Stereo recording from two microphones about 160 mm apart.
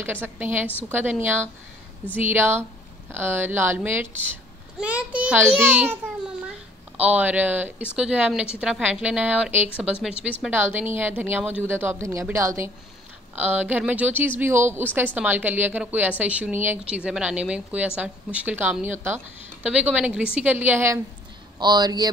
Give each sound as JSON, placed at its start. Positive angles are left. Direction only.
{"t": 0.0, "sound": "a woman's voice", "side_deg": -10}
{"t": 7.0, "sound": "a woman's voice", "side_deg": -10}
{"t": 21.5, "sound": "a man's voice", "side_deg": -25}